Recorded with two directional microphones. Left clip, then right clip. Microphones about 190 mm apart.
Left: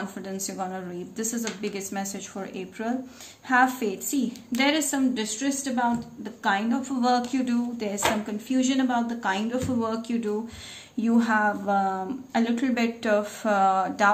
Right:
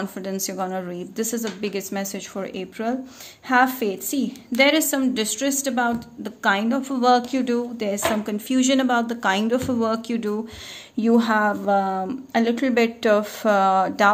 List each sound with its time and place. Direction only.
0.0 s a woman's voice: 50° right (ahead or behind)